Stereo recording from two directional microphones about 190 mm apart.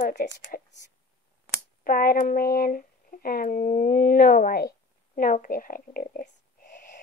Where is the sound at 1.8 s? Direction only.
50° left (ahead or behind).